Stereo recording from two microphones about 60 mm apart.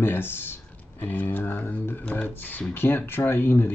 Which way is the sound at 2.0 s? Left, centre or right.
Left.